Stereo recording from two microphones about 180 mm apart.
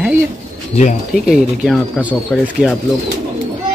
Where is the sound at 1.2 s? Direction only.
5° right (ahead or behind).